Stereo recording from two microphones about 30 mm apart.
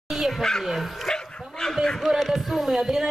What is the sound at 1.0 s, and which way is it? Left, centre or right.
Dog, left.